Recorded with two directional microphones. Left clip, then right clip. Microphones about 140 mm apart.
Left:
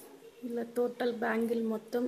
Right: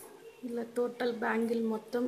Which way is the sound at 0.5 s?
25° left (ahead or behind).